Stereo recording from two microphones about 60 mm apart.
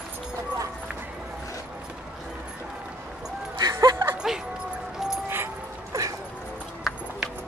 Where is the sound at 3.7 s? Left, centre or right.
Right.